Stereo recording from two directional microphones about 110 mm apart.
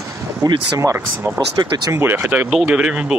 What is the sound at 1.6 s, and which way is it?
Speech, 40° right (ahead or behind).